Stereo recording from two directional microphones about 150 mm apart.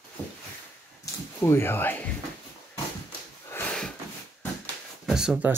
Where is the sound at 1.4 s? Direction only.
15° left (ahead or behind).